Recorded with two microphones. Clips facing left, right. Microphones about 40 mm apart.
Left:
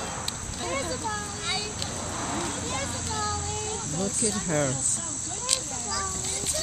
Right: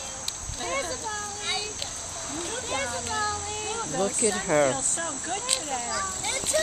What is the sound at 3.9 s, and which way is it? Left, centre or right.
Speech, right.